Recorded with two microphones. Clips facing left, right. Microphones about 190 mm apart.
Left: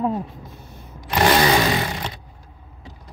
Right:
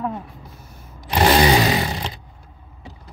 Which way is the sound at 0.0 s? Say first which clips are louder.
Left 4 dB; 20° left (ahead or behind).